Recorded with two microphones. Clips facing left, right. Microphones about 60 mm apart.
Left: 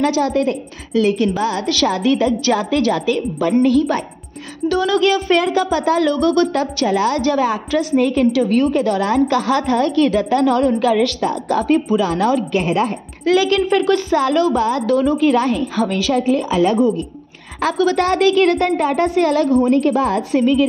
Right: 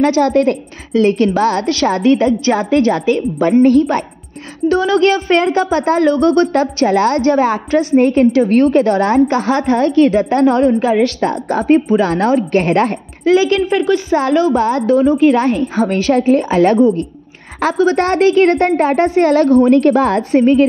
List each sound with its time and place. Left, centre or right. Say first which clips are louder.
0.0 s a woman's voice: right 5 dB; right
1.7 s speech: right 4 dB; right
4.6 s speech: right 4 dB; right
12.6 s a woman's voice: right 4 dB; right
13.2 s speech: right 3 dB; right
17.6 s speech: right 3 dB; right